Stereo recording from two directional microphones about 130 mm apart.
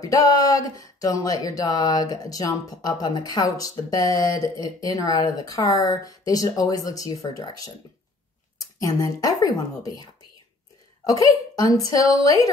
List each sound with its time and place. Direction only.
0.0 s speech: 25° left (ahead or behind)
11.1 s speech: 30° left (ahead or behind)